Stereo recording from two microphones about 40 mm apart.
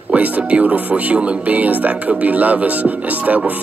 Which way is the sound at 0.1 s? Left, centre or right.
Right.